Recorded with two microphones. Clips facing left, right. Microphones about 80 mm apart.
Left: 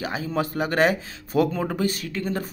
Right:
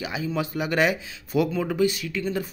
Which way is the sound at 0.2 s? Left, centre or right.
Left.